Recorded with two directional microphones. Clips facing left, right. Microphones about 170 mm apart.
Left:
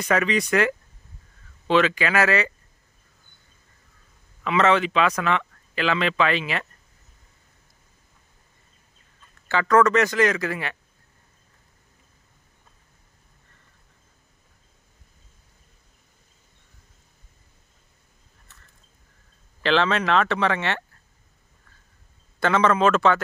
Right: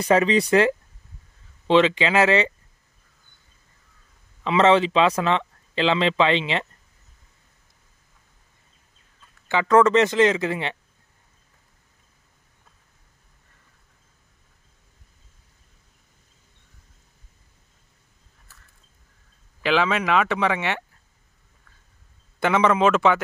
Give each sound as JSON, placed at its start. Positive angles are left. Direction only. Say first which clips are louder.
{"t": 0.0, "sound": "speech", "louder": "right 4 dB", "side_deg": -30}
{"t": 4.4, "sound": "speech", "louder": "right 3 dB", "side_deg": -25}
{"t": 9.5, "sound": "speech", "louder": "right 2 dB", "side_deg": -20}
{"t": 19.6, "sound": "speech", "louder": "even", "side_deg": -10}
{"t": 22.4, "sound": "speech", "louder": "right 1 dB", "side_deg": -15}